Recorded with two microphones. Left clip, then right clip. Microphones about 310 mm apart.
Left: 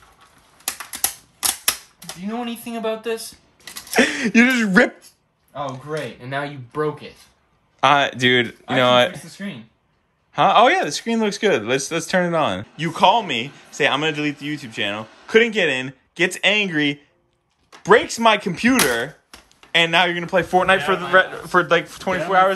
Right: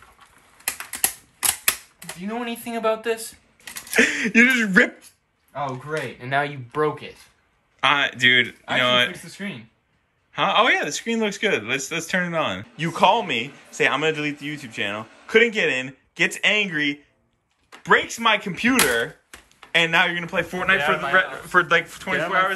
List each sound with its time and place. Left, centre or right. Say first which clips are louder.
2.4 s a man's voice: right 3 dB; centre
3.2 s a sound: left 2 dB; left
3.9 s a man's voice: left 1 dB; centre
10.3 s a man's voice: left 5 dB; centre